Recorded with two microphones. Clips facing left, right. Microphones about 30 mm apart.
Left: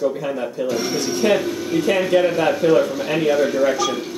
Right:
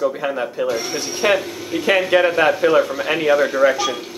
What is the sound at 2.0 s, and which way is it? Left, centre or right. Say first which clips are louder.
Speech: right 2 dB; right.